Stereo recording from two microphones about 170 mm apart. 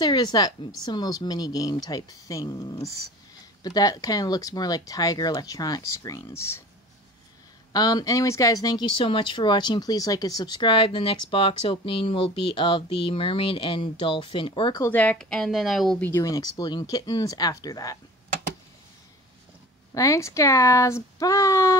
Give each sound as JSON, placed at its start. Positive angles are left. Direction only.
{"t": 0.0, "sound": "speech", "side_deg": 25}
{"t": 7.7, "sound": "speech", "side_deg": 20}
{"t": 14.8, "sound": "speech", "side_deg": 10}
{"t": 16.1, "sound": "speech", "side_deg": 20}
{"t": 19.9, "sound": "speech", "side_deg": 20}